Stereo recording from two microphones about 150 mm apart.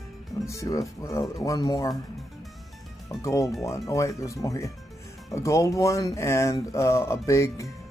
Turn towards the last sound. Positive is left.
turn(degrees=20)  # may be behind; listen again after turning